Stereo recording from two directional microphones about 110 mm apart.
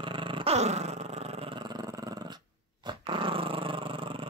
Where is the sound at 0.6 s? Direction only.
80° right; by 1.6 s 65° right (ahead or behind).